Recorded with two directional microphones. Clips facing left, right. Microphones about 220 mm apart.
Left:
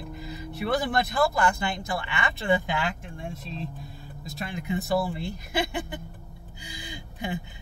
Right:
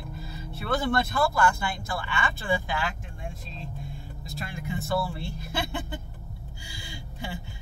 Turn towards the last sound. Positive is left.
turn(degrees=20)  # may be behind; listen again after turning